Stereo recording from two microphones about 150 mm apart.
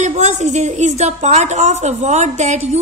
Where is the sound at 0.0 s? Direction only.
50° right (ahead or behind).